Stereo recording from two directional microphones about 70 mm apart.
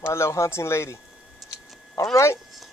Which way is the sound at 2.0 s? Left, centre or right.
Left.